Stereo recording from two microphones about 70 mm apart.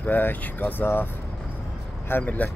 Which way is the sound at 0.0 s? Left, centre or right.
Left.